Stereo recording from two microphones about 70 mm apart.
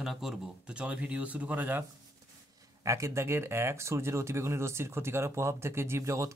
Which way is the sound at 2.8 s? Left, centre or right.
Right.